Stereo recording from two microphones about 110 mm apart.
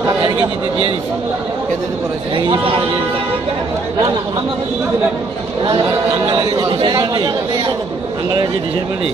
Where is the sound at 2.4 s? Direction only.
45° right (ahead or behind).